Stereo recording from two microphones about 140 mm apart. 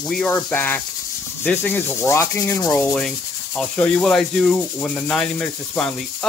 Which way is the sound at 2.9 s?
5° left (ahead or behind).